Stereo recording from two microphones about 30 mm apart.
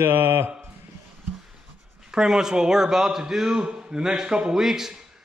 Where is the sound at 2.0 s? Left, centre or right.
Centre.